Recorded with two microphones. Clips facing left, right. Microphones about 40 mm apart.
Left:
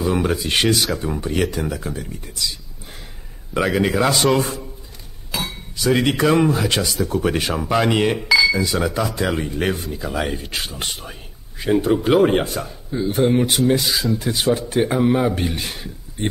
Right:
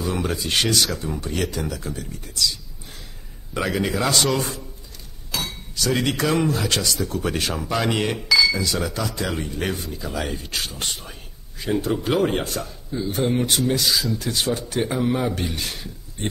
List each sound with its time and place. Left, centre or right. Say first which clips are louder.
0.1 s speech: left 4 dB; centre
3.5 s a man's voice: left 5 dB; centre